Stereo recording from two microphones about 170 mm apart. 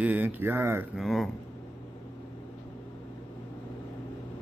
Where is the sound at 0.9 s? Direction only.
Centre (ahead or behind).